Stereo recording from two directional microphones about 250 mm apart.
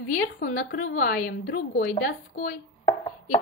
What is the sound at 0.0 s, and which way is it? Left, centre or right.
A woman's voice, left.